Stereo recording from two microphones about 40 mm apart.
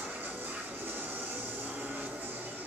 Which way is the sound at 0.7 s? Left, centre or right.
Right.